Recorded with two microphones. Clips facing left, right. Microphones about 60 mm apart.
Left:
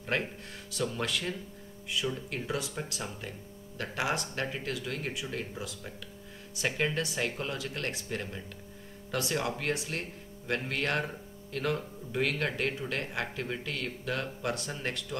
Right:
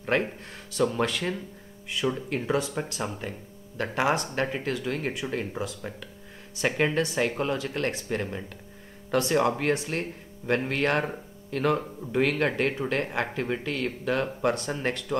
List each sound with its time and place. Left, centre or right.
0.0 s speech: right
2.1 s speech: right
7.2 s speech: right